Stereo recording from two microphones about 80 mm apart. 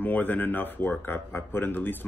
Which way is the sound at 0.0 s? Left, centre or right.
Left.